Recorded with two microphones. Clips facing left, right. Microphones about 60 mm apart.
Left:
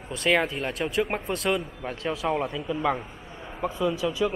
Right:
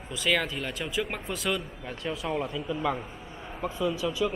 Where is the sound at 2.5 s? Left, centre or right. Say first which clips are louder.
Left 3 dB; centre.